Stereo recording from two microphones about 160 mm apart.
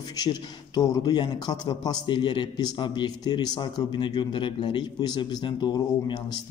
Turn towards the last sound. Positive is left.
turn(degrees=25)  # may be behind; listen again after turning